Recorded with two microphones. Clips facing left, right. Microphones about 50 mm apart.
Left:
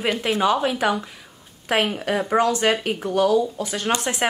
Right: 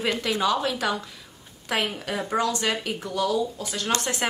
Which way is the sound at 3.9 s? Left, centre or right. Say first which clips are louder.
Left 3 dB; centre.